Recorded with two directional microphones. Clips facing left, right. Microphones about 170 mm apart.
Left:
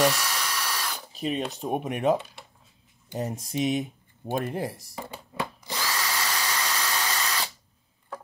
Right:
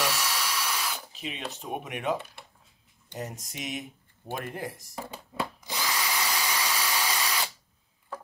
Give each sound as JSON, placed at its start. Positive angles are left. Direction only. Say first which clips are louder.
{"t": 0.0, "sound": "drill", "louder": "left 6 dB", "side_deg": -5}
{"t": 1.1, "sound": "cutlery", "louder": "left 10 dB", "side_deg": 40}
{"t": 1.5, "sound": "speech", "louder": "left 6 dB", "side_deg": 35}
{"t": 3.2, "sound": "speech", "louder": "left 9 dB", "side_deg": 30}
{"t": 4.9, "sound": "a sound", "louder": "left 1 dB", "side_deg": 0}
{"t": 5.7, "sound": "drill", "louder": "left 1 dB", "side_deg": -15}